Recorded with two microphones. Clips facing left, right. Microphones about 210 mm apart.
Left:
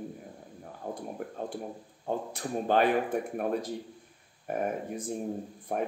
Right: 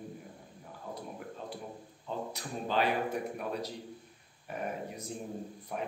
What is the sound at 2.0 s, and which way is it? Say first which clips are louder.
Speech: left 6 dB; 50° left (ahead or behind).